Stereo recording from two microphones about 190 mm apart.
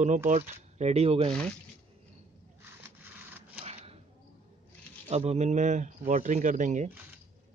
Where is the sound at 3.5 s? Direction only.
30° right (ahead or behind).